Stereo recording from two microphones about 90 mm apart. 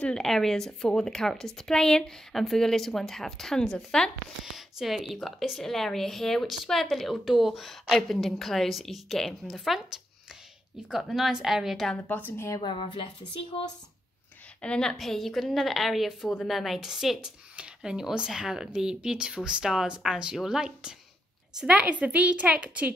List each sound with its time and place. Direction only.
0.0 s a woman's voice: 5° left (ahead or behind)
10.9 s a woman's voice: centre (ahead or behind)
12.0 s a woman's voice: 20° left (ahead or behind)
12.6 s a woman's voice: 65° left (ahead or behind)
13.3 s speech: 85° left
14.6 s a woman's voice: 10° left (ahead or behind); by 22.9 s 15° right (ahead or behind)